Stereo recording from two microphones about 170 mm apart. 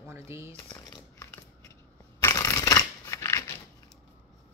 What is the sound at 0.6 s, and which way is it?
Speech, 20° left (ahead or behind).